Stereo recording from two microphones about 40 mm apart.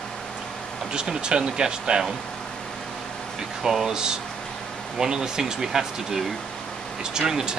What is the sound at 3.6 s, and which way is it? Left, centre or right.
Speech, centre.